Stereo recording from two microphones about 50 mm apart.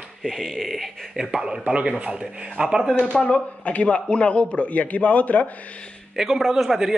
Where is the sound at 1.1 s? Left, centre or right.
Centre.